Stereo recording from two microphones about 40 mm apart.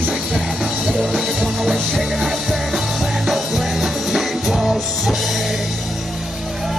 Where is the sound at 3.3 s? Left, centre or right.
Centre.